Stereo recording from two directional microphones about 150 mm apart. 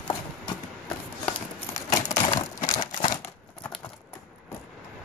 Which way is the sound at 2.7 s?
25° left (ahead or behind).